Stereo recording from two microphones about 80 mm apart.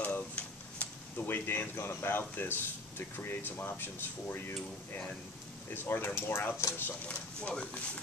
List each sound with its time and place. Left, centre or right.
0.0 s a sound: centre
1.2 s speech: left
7.1 s speech: centre